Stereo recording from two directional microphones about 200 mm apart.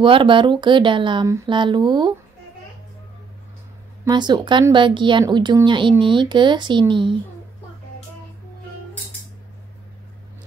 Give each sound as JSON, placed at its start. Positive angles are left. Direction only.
{"t": 0.0, "sound": "a woman's voice", "side_deg": -25}
{"t": 4.0, "sound": "a woman's voice", "side_deg": -20}